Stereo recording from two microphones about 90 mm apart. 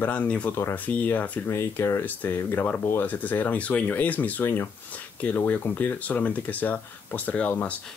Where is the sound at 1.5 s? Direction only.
30° left (ahead or behind).